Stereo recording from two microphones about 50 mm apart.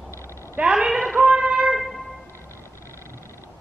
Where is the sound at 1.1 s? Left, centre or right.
Right.